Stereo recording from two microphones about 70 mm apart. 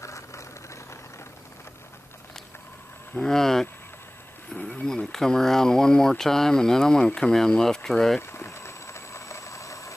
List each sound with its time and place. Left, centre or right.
0.0 s engine: left
3.2 s speech: centre
4.6 s speech: centre
4.8 s speech: centre
8.2 s a sound: left